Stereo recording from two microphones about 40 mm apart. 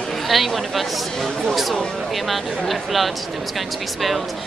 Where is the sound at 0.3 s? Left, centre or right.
Centre.